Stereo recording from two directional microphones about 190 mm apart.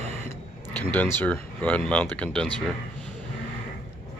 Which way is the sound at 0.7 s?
10° left (ahead or behind).